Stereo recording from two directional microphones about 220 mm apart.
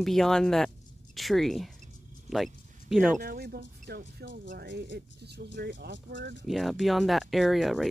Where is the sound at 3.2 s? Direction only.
40° right (ahead or behind).